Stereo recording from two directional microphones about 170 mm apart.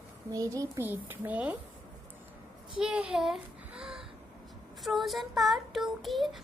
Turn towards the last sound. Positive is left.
turn(degrees=0)  # may be behind; listen again after turning